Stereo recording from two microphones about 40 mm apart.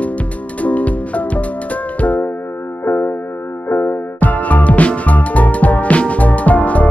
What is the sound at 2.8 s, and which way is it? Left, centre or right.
Music, left.